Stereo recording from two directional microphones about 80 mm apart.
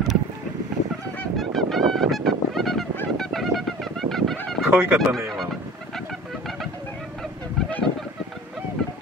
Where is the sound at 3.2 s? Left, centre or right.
Centre.